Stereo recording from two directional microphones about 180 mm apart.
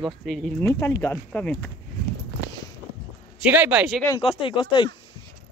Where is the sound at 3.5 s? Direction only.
10° right (ahead or behind).